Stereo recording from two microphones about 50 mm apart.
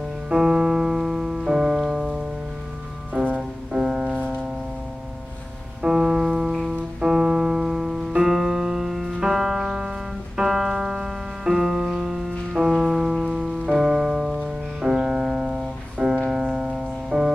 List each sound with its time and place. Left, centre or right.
0.3 s piano: centre
3.1 s music: right
3.3 s music: centre
4.1 s music: right
5.9 s music: centre
7.0 s music: centre